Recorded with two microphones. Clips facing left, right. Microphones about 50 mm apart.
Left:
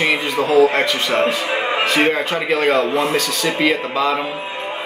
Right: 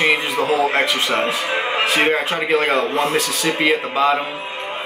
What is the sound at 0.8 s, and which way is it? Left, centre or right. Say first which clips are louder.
Speech: even; centre.